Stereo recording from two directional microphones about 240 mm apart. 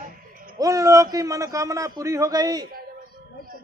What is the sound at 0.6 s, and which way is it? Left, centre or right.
A man's voice, centre.